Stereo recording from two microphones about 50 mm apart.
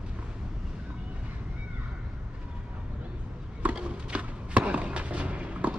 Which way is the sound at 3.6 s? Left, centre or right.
Right.